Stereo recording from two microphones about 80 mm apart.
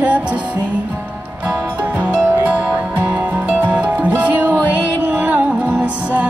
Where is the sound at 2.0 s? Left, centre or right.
Centre.